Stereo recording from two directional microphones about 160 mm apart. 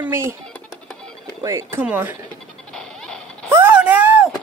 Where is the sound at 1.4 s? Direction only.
20° right (ahead or behind).